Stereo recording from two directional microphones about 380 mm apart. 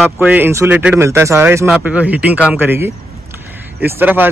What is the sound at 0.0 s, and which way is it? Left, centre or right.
Speech, centre.